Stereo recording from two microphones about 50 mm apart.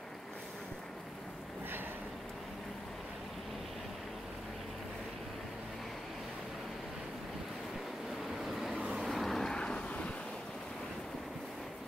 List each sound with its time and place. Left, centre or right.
8.2 s vehicle: centre
9.6 s vehicle: centre